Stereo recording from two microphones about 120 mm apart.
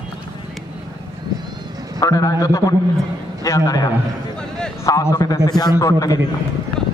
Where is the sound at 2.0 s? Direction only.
30° left (ahead or behind).